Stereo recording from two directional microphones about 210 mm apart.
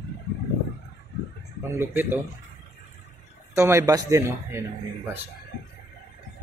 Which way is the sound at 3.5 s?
15° right (ahead or behind).